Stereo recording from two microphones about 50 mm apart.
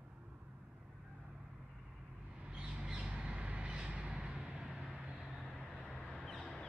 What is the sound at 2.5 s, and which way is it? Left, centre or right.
Squawk, right.